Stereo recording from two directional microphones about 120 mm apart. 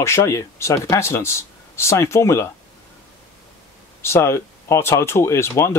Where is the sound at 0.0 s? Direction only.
25° left (ahead or behind).